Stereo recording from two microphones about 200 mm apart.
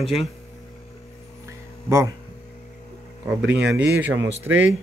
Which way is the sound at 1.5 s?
15° right (ahead or behind).